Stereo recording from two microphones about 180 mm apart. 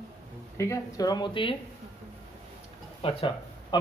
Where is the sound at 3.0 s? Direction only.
30° left (ahead or behind).